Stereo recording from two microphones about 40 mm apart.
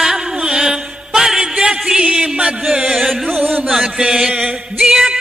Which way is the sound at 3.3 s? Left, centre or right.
Right.